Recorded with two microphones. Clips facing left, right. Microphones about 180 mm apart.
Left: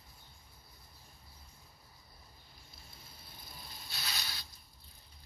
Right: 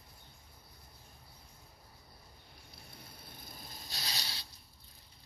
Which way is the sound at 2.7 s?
60° right (ahead or behind).